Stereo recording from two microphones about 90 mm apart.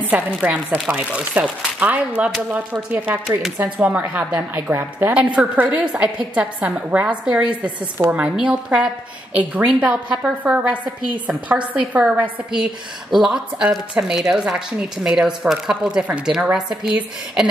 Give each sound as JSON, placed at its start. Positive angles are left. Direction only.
{"t": 0.0, "sound": "a woman's voice", "side_deg": -15}